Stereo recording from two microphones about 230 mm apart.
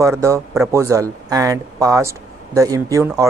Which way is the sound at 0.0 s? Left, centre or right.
Centre.